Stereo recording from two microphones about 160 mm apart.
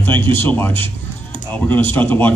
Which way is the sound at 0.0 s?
10° left (ahead or behind).